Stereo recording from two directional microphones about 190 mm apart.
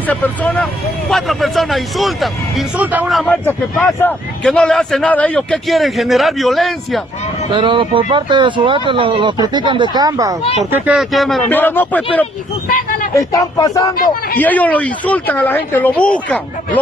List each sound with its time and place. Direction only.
0.0 s speech: 10° left (ahead or behind)
7.5 s speech: 25° right (ahead or behind)
10.7 s speech: 5° right (ahead or behind)
12.6 s a sound: 45° left (ahead or behind)
13.1 s speech: 15° left (ahead or behind)